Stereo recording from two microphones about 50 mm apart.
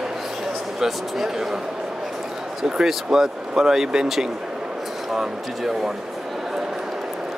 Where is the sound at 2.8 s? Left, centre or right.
Centre.